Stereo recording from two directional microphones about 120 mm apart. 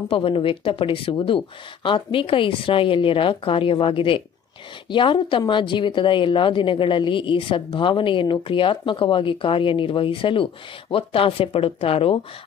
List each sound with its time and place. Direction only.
0.1 s a woman's voice: 50° left (ahead or behind)